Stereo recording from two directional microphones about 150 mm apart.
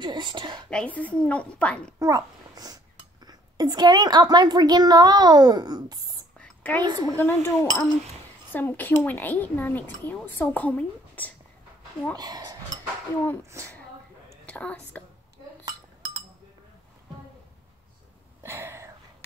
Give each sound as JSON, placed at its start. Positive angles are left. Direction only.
{"t": 0.0, "sound": "a woman's voice", "side_deg": -30}
{"t": 0.7, "sound": "speech", "side_deg": 10}
{"t": 2.0, "sound": "a child's voice", "side_deg": -20}
{"t": 6.3, "sound": "a sound", "side_deg": 10}
{"t": 6.8, "sound": "a woman's voice", "side_deg": -25}
{"t": 7.2, "sound": "speech", "side_deg": 15}
{"t": 12.2, "sound": "speech", "side_deg": -25}
{"t": 14.4, "sound": "speech", "side_deg": 10}
{"t": 18.4, "sound": "a sound", "side_deg": -15}